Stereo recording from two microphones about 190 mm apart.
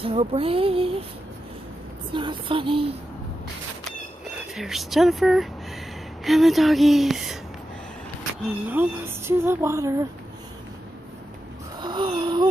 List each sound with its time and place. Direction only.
0.0 s female singing: 30° right (ahead or behind)
2.1 s female singing: 25° right (ahead or behind)
4.3 s speech: centre (ahead or behind)
8.5 s speech: 10° right (ahead or behind)
11.8 s wheeze: 25° right (ahead or behind)